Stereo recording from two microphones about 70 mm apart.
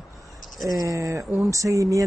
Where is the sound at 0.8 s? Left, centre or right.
Right.